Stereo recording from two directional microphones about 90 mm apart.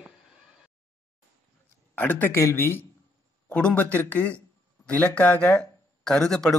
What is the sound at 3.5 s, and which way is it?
A man's voice, 15° left (ahead or behind).